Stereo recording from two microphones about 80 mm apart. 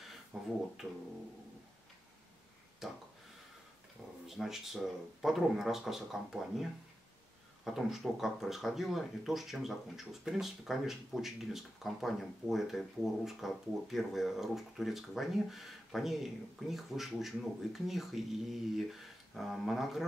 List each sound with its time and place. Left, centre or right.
0.3 s speech: centre
0.8 s guitar: right
2.8 s speech: centre
4.3 s speech: centre